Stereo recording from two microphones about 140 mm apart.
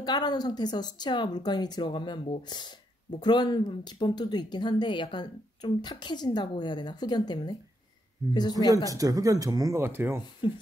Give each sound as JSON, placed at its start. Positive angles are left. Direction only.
{"t": 0.0, "sound": "speech", "side_deg": 30}
{"t": 8.9, "sound": "speech", "side_deg": -25}